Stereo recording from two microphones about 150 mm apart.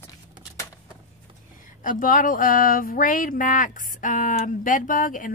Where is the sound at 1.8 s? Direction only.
65° left (ahead or behind).